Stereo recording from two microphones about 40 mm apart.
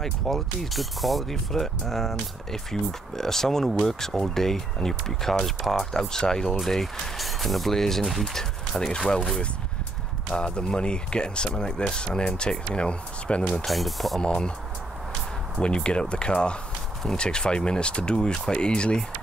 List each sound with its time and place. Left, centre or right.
0.0 s speech: centre
6.6 s speech: centre
10.3 s speech: left
13.7 s speech: centre
14.2 s speech: centre
15.6 s speech: left